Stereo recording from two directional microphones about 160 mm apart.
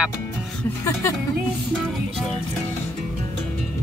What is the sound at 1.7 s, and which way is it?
Music, centre (ahead or behind).